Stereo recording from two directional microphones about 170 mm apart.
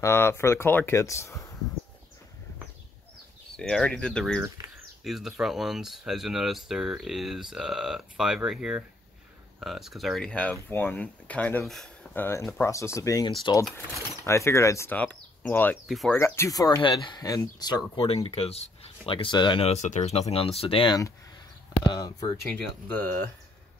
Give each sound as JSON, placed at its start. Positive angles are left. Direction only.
{"t": 0.0, "sound": "speech", "side_deg": 15}
{"t": 3.5, "sound": "speech", "side_deg": 5}
{"t": 19.7, "sound": "speech", "side_deg": 45}
{"t": 22.5, "sound": "speech", "side_deg": 10}